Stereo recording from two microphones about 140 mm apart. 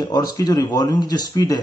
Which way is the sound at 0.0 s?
30° left (ahead or behind).